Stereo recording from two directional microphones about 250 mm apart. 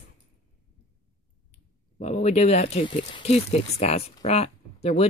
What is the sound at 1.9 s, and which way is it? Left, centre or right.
Speech, left.